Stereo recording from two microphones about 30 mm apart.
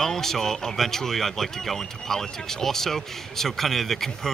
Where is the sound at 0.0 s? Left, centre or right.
Centre.